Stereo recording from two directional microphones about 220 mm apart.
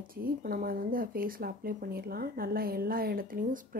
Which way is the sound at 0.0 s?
40° right (ahead or behind).